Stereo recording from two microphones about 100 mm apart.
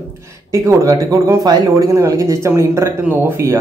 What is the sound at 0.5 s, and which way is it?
Speech, 30° right (ahead or behind).